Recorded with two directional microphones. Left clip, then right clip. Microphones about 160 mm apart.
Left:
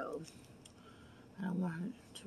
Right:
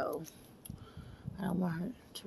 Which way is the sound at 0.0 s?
40° right (ahead or behind).